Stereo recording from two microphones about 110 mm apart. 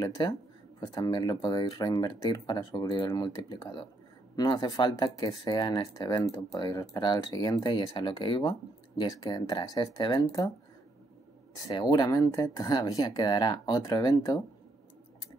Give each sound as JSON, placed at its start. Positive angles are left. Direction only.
{"t": 0.2, "sound": "speech", "side_deg": 40}
{"t": 10.1, "sound": "speech", "side_deg": 30}
{"t": 11.5, "sound": "speech", "side_deg": 35}